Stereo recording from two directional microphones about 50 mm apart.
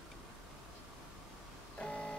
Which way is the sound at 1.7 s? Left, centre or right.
Centre.